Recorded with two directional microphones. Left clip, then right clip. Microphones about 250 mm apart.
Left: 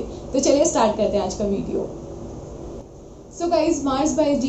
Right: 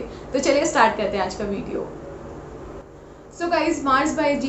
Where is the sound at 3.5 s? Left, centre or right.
Centre.